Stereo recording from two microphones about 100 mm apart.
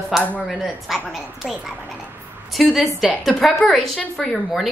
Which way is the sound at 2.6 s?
5° right (ahead or behind).